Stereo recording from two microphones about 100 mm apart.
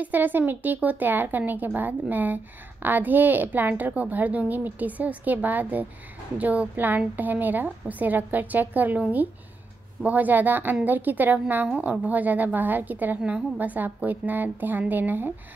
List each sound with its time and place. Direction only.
0.0 s speech: 20° right (ahead or behind)